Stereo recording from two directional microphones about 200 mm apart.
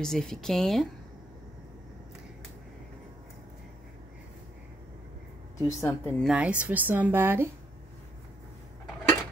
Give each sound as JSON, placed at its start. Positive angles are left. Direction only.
{"t": 0.0, "sound": "speech", "side_deg": 0}
{"t": 5.7, "sound": "a woman's voice", "side_deg": 15}
{"t": 6.2, "sound": "a woman's voice", "side_deg": -5}